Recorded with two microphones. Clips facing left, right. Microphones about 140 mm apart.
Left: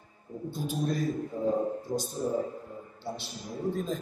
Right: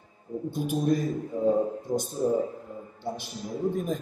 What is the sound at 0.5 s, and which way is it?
A man's voice, 15° right (ahead or behind).